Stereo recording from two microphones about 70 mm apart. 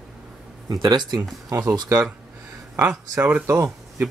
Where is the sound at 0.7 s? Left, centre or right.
Right.